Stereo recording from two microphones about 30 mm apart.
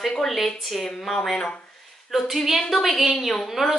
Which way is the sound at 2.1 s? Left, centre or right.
Centre.